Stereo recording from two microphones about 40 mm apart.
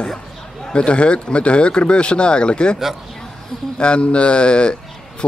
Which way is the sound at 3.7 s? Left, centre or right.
Left.